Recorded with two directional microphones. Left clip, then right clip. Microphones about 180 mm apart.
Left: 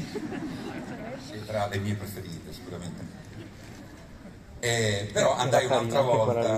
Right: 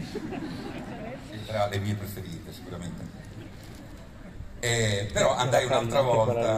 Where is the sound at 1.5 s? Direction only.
15° left (ahead or behind).